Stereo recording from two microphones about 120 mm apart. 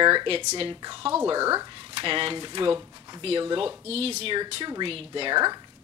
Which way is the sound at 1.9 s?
50° right (ahead or behind).